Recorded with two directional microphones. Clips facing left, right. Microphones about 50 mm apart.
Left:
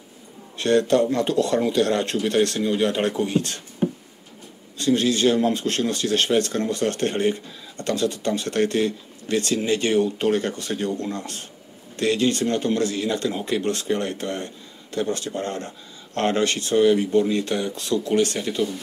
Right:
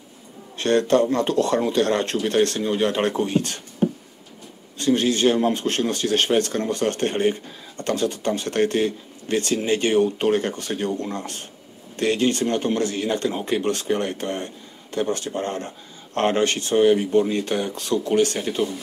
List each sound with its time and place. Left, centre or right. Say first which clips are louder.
0.6 s speech: even; right
4.7 s speech: even; right